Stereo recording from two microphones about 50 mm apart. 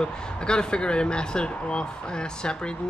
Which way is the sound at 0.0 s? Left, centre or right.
Centre.